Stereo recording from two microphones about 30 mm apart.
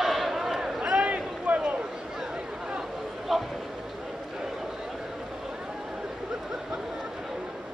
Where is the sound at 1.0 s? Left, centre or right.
Right.